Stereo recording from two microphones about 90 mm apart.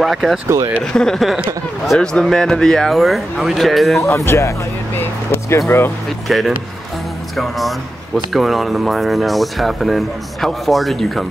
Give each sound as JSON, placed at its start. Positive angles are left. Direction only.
{"t": 0.0, "sound": "speech", "side_deg": 0}
{"t": 4.0, "sound": "speech", "side_deg": 30}
{"t": 6.2, "sound": "speech", "side_deg": 0}